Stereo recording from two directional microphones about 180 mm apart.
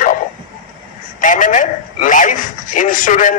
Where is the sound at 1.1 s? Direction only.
45° left (ahead or behind).